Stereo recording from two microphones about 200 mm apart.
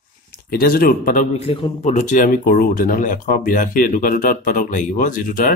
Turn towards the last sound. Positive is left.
turn(degrees=40)  # may be behind; listen again after turning